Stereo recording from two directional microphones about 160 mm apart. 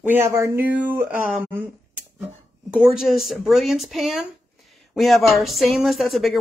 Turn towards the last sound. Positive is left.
turn(degrees=0)  # may be behind; listen again after turning